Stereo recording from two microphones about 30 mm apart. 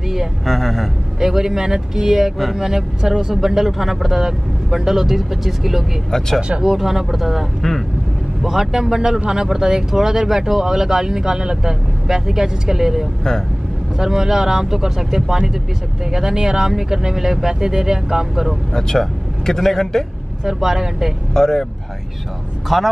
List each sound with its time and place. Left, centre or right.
0.5 s speech: centre
1.2 s speech: centre
18.7 s speech: centre
20.4 s speech: centre
21.3 s speech: centre
22.7 s speech: centre